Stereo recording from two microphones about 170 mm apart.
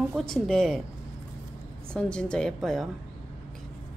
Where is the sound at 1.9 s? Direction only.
5° left (ahead or behind).